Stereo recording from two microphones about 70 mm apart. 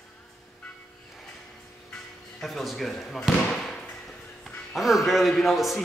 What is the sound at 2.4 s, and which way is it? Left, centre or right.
Basketball bounce, centre.